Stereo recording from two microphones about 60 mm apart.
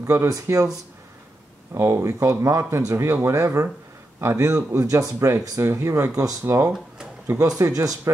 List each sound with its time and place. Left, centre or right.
0.0 s speech: right
0.5 s speech: right
1.7 s speech: right
2.9 s speech: right
4.7 s speech: right
7.3 s speech: right
7.7 s speech: right